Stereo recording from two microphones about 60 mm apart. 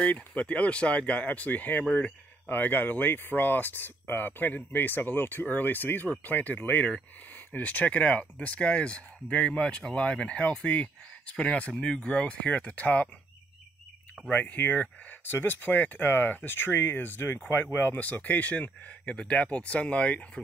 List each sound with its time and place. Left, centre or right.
0.0 s speech: left
14.3 s speech: left